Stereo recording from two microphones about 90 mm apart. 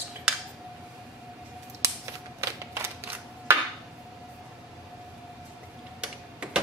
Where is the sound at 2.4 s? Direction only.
35° right (ahead or behind).